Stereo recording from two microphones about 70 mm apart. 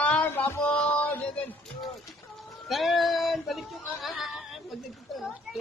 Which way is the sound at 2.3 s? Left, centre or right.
Centre.